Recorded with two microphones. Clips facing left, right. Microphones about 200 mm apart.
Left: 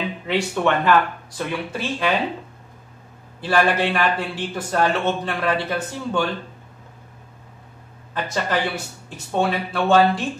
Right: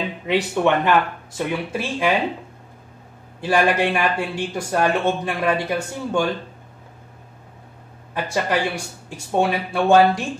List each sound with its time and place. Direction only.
0.3 s a man's voice: 15° right (ahead or behind)
3.3 s a man's voice: 10° right (ahead or behind)
8.1 s a man's voice: 10° right (ahead or behind)